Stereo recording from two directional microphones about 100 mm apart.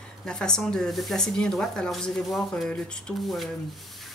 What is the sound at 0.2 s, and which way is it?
Speech, 5° left (ahead or behind).